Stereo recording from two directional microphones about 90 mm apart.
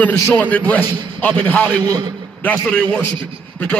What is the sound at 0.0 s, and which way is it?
A man's voice, 20° left (ahead or behind).